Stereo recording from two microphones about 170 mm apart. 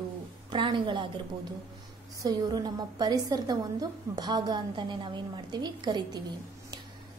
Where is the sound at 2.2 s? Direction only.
25° right (ahead or behind).